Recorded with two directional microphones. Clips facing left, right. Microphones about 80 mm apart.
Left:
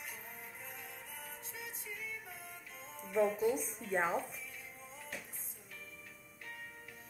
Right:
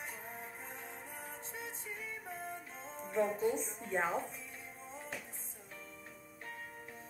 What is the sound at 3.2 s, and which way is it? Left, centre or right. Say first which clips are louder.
Speech: left 2 dB; right.